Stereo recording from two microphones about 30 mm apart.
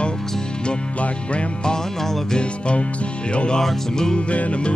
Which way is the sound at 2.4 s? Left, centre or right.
Left.